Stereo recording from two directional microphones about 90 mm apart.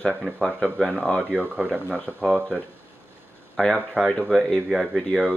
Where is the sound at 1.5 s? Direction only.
15° right (ahead or behind).